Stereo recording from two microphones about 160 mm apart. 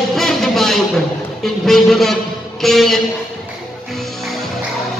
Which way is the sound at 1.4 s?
Centre (ahead or behind).